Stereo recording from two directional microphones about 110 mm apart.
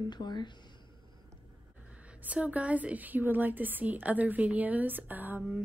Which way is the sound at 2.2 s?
15° right (ahead or behind).